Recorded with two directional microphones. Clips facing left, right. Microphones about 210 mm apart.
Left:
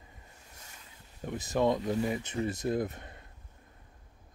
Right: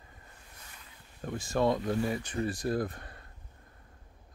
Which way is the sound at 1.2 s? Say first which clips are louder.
Even; 20° left (ahead or behind).